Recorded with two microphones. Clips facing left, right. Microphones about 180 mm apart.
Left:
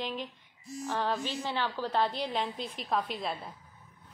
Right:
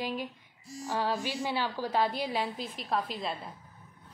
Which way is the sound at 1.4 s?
15° right (ahead or behind).